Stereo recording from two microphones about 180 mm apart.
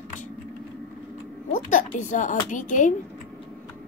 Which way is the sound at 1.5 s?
40° left (ahead or behind).